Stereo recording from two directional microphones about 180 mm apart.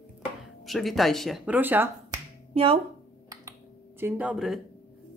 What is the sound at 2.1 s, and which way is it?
Finger snapping, 30° right (ahead or behind).